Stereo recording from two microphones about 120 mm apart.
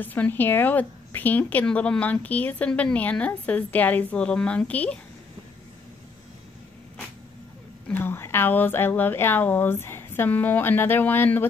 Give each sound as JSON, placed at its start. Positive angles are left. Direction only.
{"t": 0.0, "sound": "a woman's voice", "side_deg": 15}
{"t": 7.9, "sound": "a woman's voice", "side_deg": 20}